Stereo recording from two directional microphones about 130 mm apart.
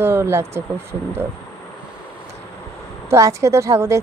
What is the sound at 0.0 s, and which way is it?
Speech, 20° right (ahead or behind).